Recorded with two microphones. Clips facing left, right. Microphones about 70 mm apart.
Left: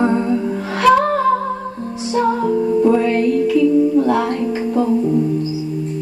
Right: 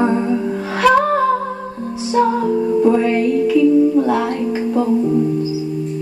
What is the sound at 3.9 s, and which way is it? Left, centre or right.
Music, centre.